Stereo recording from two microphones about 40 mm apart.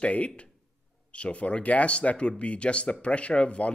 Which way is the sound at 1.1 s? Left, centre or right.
Left.